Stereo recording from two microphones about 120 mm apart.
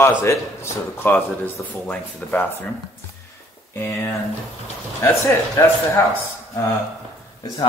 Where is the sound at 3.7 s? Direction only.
20° left (ahead or behind).